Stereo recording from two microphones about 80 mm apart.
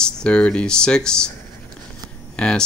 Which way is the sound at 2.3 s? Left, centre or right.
Centre.